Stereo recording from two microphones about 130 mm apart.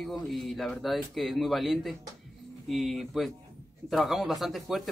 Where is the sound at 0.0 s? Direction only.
Centre (ahead or behind).